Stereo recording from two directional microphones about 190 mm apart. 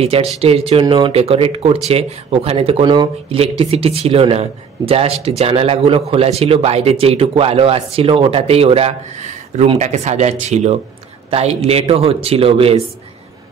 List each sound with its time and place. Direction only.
0.0 s a man's voice: 30° right (ahead or behind)